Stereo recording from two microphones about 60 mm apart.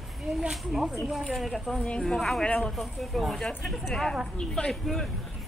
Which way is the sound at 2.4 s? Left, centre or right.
Centre.